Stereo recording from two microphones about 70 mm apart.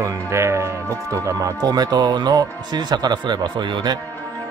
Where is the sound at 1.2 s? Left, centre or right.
Right.